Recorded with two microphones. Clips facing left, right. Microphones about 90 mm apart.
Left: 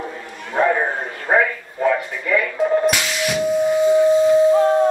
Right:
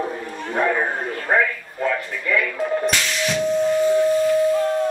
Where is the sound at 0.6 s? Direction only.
10° left (ahead or behind).